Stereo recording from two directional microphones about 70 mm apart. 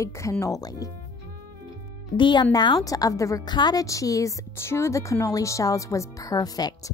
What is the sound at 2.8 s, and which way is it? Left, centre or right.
Speech, left.